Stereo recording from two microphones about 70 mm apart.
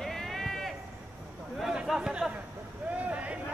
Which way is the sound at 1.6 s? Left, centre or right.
Centre.